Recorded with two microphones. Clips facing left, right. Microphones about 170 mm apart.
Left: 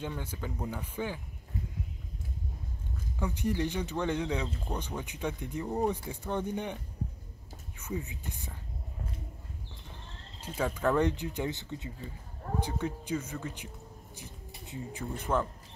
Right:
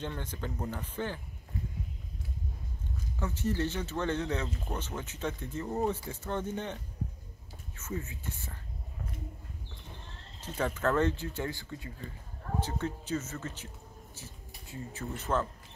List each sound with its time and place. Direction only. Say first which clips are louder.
0.0 s speech: even; 10° left (ahead or behind)
3.2 s speech: left 1 dB; 15° left (ahead or behind)
10.4 s speech: left 1 dB; 10° left (ahead or behind)